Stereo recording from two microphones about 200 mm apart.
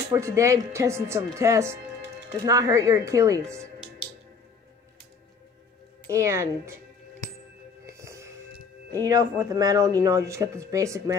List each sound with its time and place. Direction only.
0.1 s speech: 15° right (ahead or behind)
6.0 s speech: 15° right (ahead or behind)
7.8 s music: 15° right (ahead or behind)
8.9 s speech: 15° right (ahead or behind)